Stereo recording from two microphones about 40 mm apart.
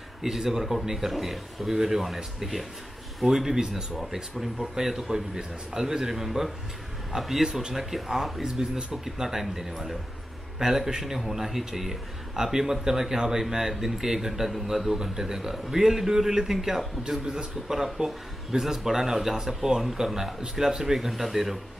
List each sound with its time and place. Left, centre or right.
0.2 s a man's voice: centre